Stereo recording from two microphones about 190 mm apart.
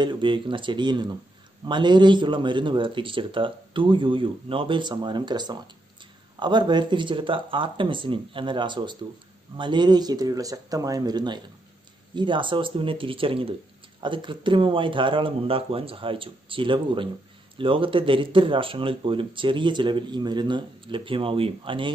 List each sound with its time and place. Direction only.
0.0 s speech: 25° right (ahead or behind)